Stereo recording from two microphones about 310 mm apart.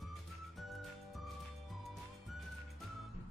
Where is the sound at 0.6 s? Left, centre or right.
Centre.